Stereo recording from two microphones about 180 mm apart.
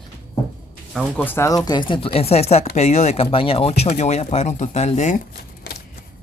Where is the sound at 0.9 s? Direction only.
10° left (ahead or behind); by 5.2 s 40° left (ahead or behind).